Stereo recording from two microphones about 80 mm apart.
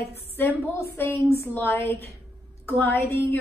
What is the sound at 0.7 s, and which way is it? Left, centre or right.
A woman's voice, left.